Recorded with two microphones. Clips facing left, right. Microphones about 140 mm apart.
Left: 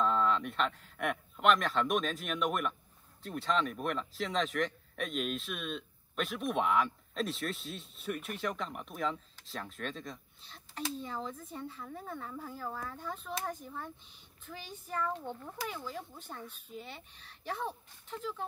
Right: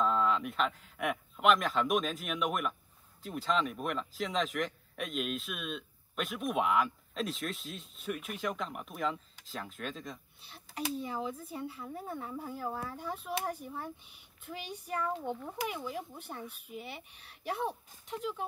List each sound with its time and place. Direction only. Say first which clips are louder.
0.0 s speech: even; 5° right (ahead or behind)